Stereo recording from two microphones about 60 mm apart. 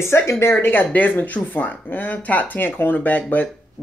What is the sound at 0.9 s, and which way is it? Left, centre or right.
Speech, left.